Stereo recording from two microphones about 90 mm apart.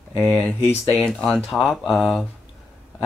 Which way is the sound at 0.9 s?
5° left (ahead or behind).